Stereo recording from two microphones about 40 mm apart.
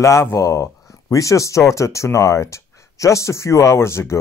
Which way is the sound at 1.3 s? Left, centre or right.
Left.